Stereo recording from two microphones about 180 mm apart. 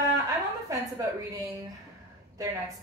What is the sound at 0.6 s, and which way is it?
A woman's voice, 20° right (ahead or behind).